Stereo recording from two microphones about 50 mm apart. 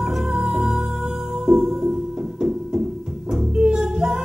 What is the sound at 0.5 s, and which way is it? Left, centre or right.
Music, centre.